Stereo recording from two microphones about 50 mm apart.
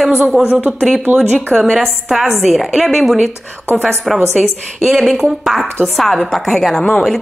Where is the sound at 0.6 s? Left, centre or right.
Right.